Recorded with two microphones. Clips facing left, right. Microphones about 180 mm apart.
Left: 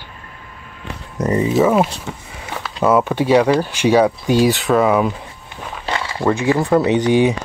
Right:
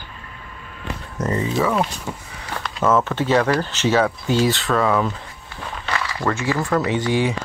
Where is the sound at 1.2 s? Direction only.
20° left (ahead or behind).